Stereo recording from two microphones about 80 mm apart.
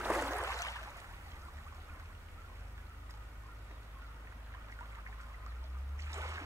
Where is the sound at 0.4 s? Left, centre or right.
Left.